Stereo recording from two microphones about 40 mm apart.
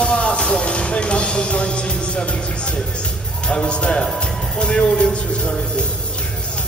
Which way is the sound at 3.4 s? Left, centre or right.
Left.